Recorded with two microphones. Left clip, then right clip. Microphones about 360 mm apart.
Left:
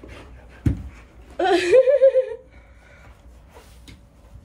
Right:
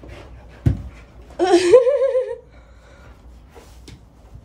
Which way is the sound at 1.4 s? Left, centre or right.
Centre.